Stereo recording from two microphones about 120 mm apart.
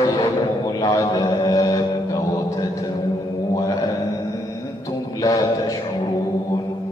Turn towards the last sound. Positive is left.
turn(degrees=30)  # may be behind; listen again after turning